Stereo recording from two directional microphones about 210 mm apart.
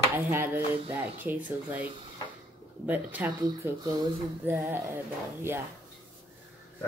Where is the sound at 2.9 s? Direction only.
10° right (ahead or behind).